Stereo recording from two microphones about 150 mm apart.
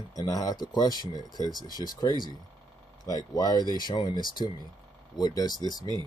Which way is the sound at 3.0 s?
25° left (ahead or behind).